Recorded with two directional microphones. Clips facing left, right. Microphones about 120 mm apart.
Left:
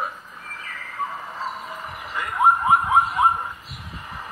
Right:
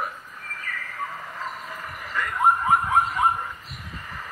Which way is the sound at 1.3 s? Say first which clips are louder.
Left 3 dB; 15° left (ahead or behind).